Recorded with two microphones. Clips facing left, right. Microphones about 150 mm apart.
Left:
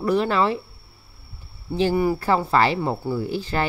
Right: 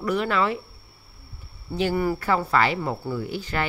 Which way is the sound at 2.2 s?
30° left (ahead or behind).